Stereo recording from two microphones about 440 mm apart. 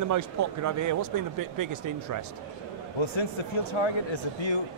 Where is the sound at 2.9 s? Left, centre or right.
Left.